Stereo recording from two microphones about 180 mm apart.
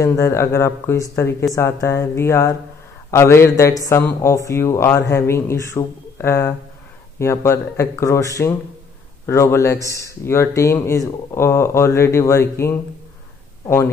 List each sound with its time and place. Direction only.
0.0 s a man's voice: 15° left (ahead or behind)